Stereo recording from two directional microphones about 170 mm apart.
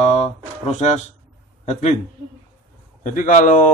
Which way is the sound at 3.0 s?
50° left (ahead or behind).